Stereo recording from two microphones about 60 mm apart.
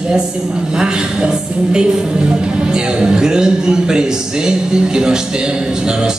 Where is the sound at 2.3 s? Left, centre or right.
Centre.